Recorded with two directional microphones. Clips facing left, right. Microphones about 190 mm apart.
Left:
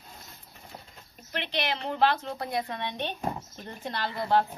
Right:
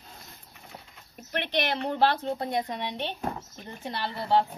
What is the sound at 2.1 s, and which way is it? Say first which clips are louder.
Speech: right 2 dB; 30° right (ahead or behind).